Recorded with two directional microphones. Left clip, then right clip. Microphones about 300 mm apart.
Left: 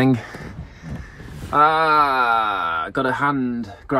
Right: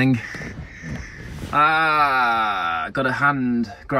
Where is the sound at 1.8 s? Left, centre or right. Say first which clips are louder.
Left 1 dB; left.